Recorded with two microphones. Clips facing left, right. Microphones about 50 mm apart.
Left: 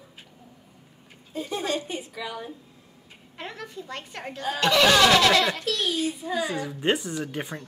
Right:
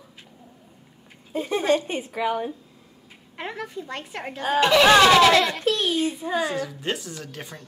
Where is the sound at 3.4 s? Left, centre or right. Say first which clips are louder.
Right 5 dB; centre.